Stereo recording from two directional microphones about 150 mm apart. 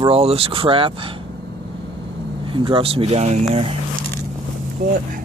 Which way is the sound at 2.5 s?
35° right (ahead or behind).